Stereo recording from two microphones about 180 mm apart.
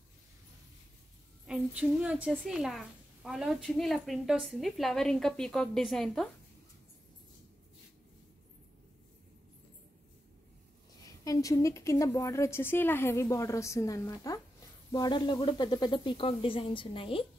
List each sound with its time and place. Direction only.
1.4 s a woman's voice: 5° right (ahead or behind)
11.2 s a woman's voice: 20° left (ahead or behind)